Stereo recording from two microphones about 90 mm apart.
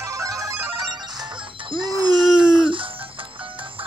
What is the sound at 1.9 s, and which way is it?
Wail, 45° right (ahead or behind).